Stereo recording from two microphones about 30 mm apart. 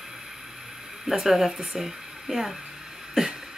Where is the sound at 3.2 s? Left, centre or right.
Right.